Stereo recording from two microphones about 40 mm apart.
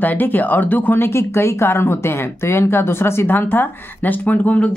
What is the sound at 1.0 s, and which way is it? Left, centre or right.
Speech, left.